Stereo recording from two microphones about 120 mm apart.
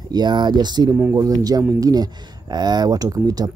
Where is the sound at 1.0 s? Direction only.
25° right (ahead or behind).